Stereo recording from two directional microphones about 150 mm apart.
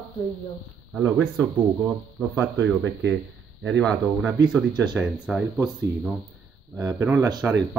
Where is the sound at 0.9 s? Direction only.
5° right (ahead or behind).